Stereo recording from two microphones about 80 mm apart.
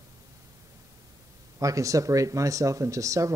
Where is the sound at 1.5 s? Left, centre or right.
Right.